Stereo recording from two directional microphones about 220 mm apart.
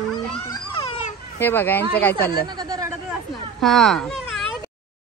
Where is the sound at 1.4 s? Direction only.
10° left (ahead or behind).